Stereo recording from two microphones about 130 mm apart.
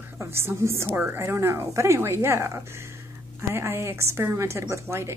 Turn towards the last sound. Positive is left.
turn(degrees=-20)  # may be behind; listen again after turning